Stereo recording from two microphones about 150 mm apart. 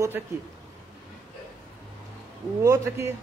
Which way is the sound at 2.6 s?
20° right (ahead or behind).